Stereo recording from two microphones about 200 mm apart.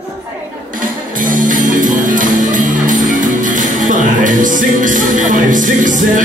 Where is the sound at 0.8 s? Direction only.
40° right (ahead or behind).